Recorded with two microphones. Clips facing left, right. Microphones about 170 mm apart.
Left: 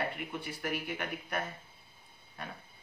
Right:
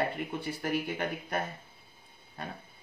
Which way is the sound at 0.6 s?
35° right (ahead or behind).